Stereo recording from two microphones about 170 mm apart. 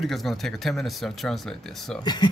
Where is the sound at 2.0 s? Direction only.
25° left (ahead or behind).